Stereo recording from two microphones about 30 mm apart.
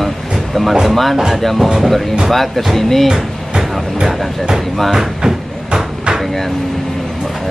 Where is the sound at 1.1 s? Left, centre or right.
Centre.